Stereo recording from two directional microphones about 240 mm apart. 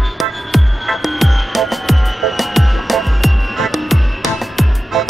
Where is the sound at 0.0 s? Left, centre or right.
Centre.